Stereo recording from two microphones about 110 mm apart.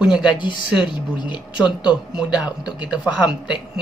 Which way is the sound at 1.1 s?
40° left (ahead or behind).